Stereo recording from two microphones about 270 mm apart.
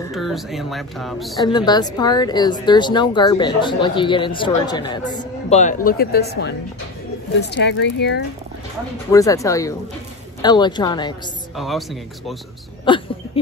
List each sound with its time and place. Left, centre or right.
0.1 s speech: centre
1.4 s a woman's voice: centre; by 8.2 s left
9.1 s a woman's voice: centre
11.5 s speech: centre
12.8 s a sound: centre